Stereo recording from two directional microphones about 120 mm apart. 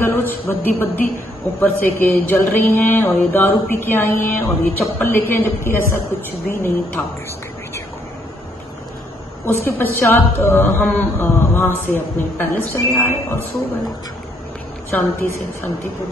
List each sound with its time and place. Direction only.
0.0 s speech: 15° left (ahead or behind)
9.5 s speech: 15° left (ahead or behind)
14.9 s a woman's voice: 20° left (ahead or behind)